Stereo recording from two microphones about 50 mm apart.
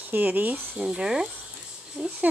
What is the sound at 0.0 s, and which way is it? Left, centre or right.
Speech, right.